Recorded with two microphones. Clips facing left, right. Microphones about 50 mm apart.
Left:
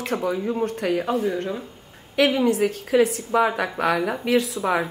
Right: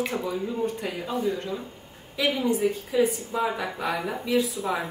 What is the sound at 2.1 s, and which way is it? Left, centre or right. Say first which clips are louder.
A woman's voice: left 6 dB; left.